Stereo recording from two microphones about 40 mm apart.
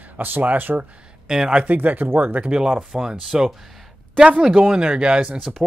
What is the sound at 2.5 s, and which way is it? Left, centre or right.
Speech, right.